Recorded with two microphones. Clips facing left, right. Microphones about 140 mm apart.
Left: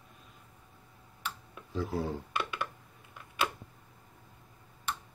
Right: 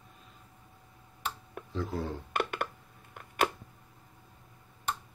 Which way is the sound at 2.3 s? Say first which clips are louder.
Right 3 dB; 55° right (ahead or behind).